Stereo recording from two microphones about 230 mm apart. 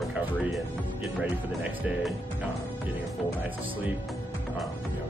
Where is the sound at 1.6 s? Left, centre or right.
Centre.